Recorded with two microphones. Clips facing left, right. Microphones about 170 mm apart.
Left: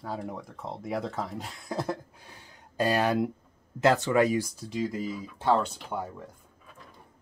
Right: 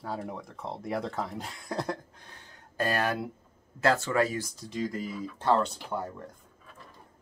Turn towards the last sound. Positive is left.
turn(degrees=10)  # may be behind; listen again after turning